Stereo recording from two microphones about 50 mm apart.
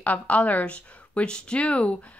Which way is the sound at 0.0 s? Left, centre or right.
Left.